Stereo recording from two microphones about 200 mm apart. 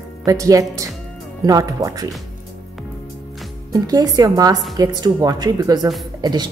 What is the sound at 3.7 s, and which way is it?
A woman's voice, 20° right (ahead or behind).